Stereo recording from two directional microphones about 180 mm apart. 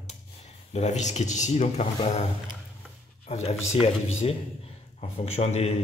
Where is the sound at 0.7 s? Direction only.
40° left (ahead or behind).